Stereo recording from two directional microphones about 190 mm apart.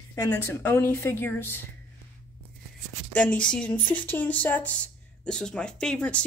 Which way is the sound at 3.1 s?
5° left (ahead or behind).